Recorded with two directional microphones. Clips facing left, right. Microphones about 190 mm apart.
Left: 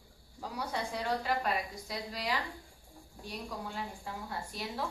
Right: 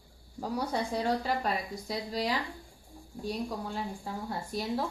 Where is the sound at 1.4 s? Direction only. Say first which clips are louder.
Right 2 dB; 40° right (ahead or behind).